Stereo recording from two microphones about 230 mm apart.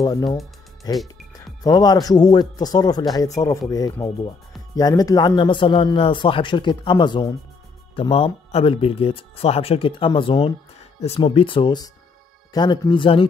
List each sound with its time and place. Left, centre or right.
0.0 s speech: centre